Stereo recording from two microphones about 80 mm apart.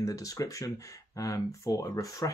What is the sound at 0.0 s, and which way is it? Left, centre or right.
Speech, left.